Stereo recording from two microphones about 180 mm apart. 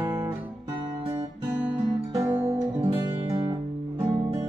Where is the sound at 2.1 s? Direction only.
15° right (ahead or behind).